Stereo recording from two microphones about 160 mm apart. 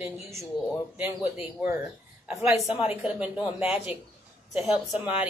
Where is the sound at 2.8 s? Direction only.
10° right (ahead or behind).